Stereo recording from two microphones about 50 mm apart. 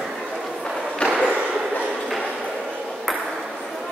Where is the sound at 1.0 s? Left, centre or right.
Centre.